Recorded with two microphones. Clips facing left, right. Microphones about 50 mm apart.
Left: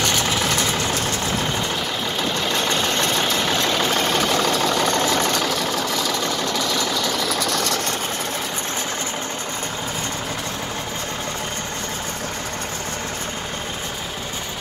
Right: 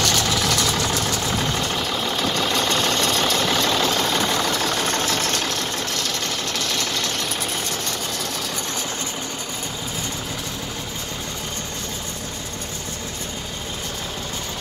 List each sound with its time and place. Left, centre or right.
0.0 s vehicle: centre
7.3 s engine: left